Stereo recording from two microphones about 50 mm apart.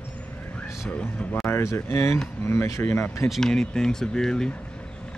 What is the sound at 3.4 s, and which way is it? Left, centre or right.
Speech, centre.